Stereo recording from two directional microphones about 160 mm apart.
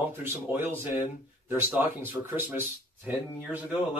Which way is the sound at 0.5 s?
15° right (ahead or behind).